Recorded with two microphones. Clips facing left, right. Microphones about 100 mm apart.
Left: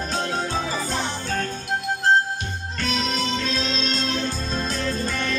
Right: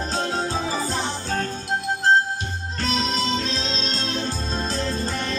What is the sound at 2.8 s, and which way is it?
Music, 35° right (ahead or behind).